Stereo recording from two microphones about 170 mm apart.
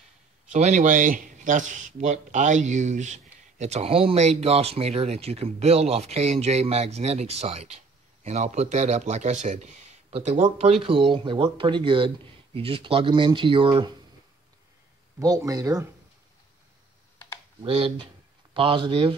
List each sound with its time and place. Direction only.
0.5 s speech: 45° right (ahead or behind); by 13.9 s 30° right (ahead or behind)
15.1 s speech: 20° right (ahead or behind)
17.6 s speech: 35° right (ahead or behind)